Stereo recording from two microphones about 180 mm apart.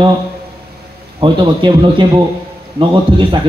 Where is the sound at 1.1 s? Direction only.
25° right (ahead or behind).